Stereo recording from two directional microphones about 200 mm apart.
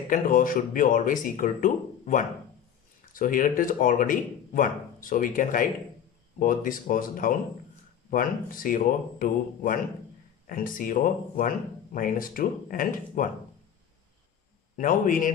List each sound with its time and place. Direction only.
0.1 s speech: 45° left (ahead or behind)
14.8 s a man's voice: 40° left (ahead or behind)